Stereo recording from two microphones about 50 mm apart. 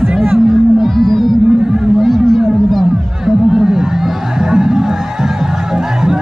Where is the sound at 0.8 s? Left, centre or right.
Centre.